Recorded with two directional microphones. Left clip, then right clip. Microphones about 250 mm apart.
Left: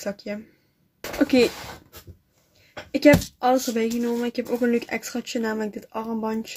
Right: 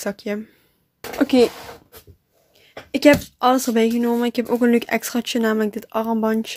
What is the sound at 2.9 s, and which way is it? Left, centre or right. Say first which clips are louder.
Speech: right 2 dB; right.